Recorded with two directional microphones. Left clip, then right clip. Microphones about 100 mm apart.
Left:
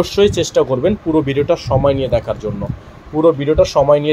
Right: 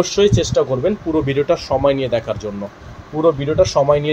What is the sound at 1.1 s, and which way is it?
Speech, 30° left (ahead or behind).